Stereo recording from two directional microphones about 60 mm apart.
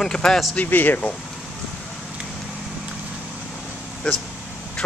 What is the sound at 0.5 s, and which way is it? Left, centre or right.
Speech, left.